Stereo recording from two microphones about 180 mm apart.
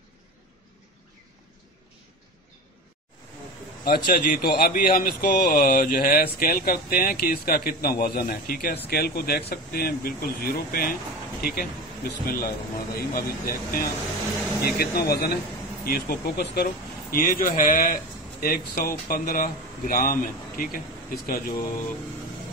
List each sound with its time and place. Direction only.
3.8 s a man's voice: 60° left (ahead or behind)